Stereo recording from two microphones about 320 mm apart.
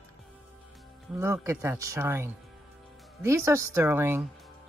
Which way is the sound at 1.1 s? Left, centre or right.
Centre.